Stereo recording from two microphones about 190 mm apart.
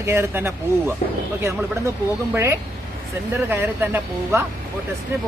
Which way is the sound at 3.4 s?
10° right (ahead or behind).